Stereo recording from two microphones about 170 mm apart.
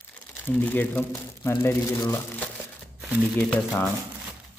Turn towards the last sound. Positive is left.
turn(degrees=10)  # may be behind; listen again after turning